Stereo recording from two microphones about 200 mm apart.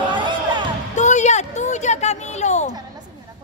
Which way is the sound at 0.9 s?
35° left (ahead or behind).